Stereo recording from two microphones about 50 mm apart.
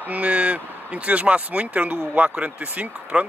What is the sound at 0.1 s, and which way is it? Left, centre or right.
Speech, right.